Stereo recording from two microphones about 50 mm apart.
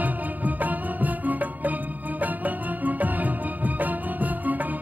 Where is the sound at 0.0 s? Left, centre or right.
Right.